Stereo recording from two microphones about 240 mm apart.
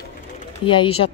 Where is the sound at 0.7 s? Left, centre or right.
Left.